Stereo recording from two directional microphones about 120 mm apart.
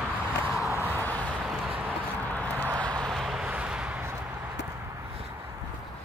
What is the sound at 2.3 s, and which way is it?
Vehicle, 10° left (ahead or behind).